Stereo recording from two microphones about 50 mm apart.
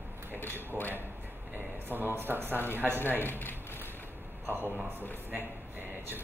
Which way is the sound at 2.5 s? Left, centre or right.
Left.